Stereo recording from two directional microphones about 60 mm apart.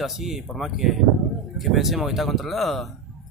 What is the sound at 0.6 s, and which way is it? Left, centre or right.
Speech, centre.